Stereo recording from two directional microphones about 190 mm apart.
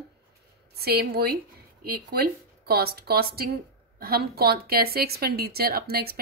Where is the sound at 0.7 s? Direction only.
55° right (ahead or behind).